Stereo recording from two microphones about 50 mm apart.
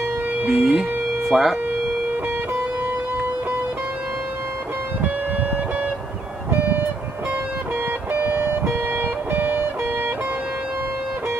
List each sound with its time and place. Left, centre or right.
0.5 s speech: centre
8.1 s guitar: right